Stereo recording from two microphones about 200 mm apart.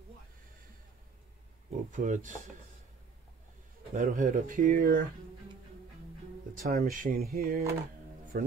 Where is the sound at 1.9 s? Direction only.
40° right (ahead or behind).